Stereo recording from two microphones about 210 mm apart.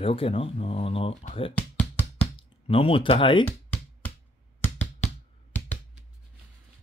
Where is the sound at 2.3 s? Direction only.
25° left (ahead or behind).